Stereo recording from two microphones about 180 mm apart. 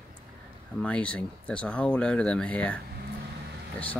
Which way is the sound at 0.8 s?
5° left (ahead or behind).